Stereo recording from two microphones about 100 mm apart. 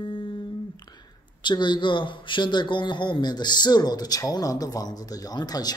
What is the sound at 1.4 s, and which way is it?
A man's voice, 50° left (ahead or behind).